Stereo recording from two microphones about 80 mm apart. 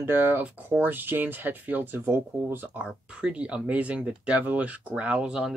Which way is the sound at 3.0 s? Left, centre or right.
Centre.